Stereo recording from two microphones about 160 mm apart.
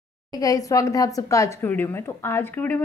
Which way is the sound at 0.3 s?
20° left (ahead or behind).